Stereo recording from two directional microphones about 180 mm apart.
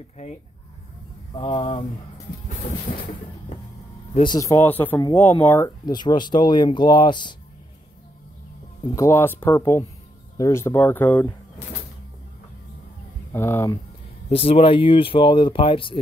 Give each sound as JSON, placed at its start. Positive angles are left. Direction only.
{"t": 1.3, "sound": "speech", "side_deg": 25}
{"t": 4.1, "sound": "speech", "side_deg": 25}
{"t": 8.9, "sound": "speech", "side_deg": 15}
{"t": 13.3, "sound": "speech", "side_deg": 15}
{"t": 14.3, "sound": "speech", "side_deg": 30}